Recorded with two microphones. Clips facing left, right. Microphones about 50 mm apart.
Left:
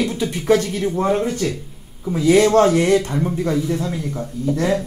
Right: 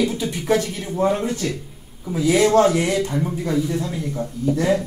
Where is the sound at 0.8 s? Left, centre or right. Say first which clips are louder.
Left 2 dB; centre.